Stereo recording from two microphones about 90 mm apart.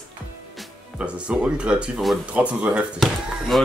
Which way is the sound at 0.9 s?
15° right (ahead or behind).